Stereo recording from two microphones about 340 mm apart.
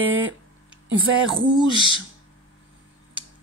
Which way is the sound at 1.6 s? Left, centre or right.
Centre.